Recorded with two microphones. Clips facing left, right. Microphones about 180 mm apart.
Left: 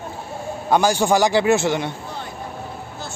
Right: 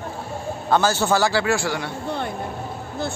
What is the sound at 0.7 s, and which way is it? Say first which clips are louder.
A man's voice: left 2 dB; 15° left (ahead or behind).